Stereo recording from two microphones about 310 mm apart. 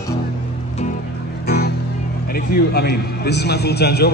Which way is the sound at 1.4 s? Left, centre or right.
Left.